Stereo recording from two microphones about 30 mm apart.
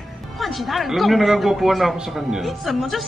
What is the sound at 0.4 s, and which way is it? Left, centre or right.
A woman's voice, centre.